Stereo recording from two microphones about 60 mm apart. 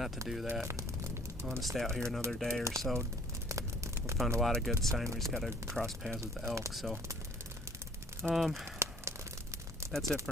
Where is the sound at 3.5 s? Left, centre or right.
Right.